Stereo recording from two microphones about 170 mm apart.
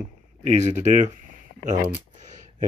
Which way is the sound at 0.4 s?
40° right (ahead or behind).